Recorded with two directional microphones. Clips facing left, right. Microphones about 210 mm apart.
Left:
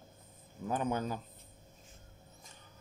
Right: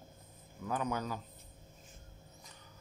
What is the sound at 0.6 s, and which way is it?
Speech, 25° left (ahead or behind).